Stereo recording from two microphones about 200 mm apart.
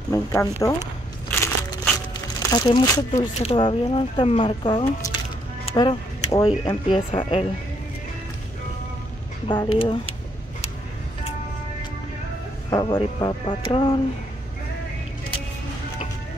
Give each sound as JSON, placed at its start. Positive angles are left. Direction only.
{"t": 0.1, "sound": "speech", "side_deg": 15}
{"t": 2.5, "sound": "speech", "side_deg": 20}
{"t": 3.2, "sound": "speech", "side_deg": 30}
{"t": 9.5, "sound": "speech", "side_deg": 25}
{"t": 12.6, "sound": "speech", "side_deg": 20}